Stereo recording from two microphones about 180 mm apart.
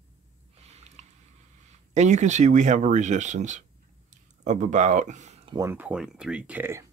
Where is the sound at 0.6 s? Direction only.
35° right (ahead or behind).